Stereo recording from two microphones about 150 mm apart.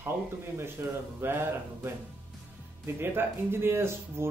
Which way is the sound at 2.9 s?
15° right (ahead or behind).